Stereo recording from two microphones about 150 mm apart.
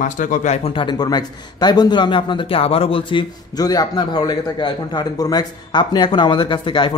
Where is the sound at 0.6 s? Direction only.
35° left (ahead or behind).